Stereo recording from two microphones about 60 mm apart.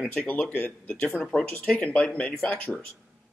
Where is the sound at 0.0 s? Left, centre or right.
Centre.